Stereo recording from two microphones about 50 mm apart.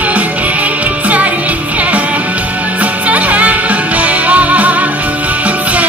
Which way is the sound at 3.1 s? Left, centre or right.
Right.